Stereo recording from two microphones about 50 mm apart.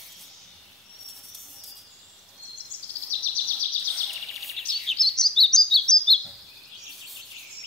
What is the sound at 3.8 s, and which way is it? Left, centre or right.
Bird vocalization, centre.